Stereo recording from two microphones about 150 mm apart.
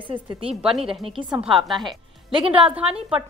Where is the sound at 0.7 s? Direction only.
Centre (ahead or behind).